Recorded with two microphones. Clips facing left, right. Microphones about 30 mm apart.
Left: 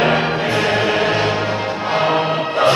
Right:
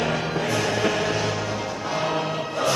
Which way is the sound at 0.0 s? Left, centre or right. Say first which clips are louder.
Left 8 dB; left.